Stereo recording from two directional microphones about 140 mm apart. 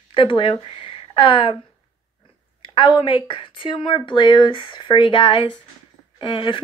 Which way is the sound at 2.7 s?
40° left (ahead or behind).